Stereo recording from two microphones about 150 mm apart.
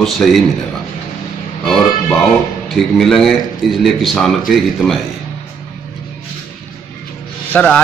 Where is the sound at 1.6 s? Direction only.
5° left (ahead or behind).